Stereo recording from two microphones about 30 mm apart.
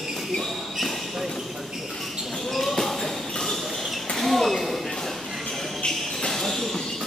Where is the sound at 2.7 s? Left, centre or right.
Centre.